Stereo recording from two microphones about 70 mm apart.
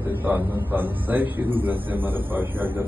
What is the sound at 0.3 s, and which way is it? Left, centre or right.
A man's voice, right.